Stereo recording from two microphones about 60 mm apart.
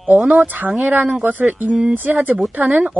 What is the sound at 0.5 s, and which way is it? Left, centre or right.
A woman's voice, right.